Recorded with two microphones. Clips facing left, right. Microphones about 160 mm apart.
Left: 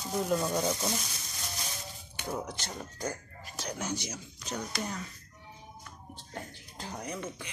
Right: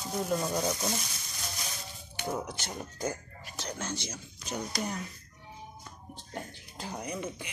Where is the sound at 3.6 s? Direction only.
10° left (ahead or behind).